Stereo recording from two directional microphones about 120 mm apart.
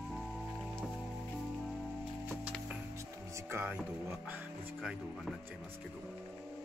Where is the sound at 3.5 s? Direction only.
15° right (ahead or behind).